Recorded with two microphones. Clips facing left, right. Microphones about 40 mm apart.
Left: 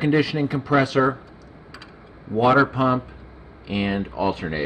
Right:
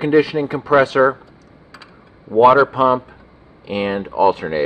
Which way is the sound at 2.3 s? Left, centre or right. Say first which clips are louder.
Right 6 dB; right.